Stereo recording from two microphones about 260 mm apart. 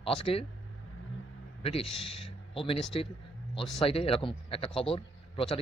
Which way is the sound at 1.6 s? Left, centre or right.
Left.